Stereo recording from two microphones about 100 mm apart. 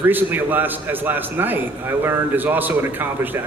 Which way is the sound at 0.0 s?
20° right (ahead or behind).